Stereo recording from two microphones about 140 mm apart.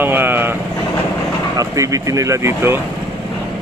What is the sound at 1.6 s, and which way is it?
Speech, 25° right (ahead or behind).